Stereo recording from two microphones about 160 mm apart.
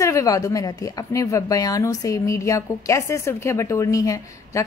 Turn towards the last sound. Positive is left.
turn(degrees=20)  # may be behind; listen again after turning